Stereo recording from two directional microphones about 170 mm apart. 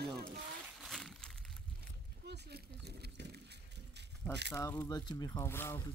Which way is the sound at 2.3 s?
75° right (ahead or behind).